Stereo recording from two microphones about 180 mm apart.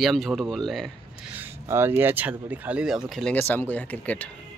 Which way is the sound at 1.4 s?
10° right (ahead or behind).